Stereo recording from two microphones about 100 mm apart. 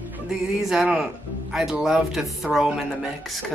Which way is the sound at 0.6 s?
5° right (ahead or behind).